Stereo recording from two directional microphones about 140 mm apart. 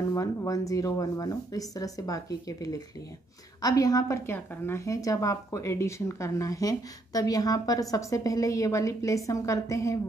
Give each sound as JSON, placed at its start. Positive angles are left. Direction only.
{"t": 0.1, "sound": "a woman's voice", "side_deg": 25}